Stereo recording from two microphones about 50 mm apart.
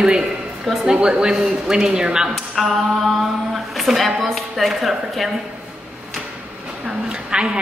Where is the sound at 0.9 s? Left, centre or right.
Centre.